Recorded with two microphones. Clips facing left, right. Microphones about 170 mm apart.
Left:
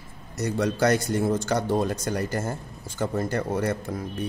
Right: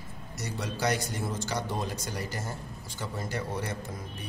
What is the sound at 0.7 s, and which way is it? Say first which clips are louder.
Speech: left 5 dB; 55° left (ahead or behind).